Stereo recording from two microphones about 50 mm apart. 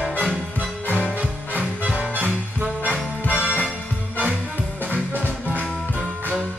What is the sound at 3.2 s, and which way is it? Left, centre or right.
Music, left.